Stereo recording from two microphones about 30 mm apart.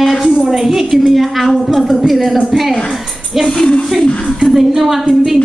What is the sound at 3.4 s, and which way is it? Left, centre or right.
Speech, left.